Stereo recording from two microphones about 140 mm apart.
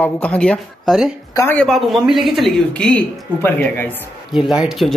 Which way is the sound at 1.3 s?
20° left (ahead or behind).